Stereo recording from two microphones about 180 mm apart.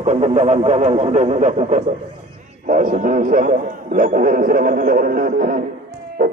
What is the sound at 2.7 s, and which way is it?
A man's voice, 45° right (ahead or behind).